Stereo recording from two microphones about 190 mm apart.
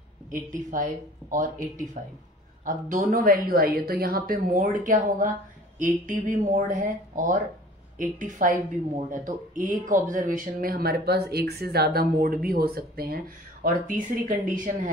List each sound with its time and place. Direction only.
0.3 s a woman's voice: 40° right (ahead or behind)
2.0 s a woman's voice: 45° right (ahead or behind)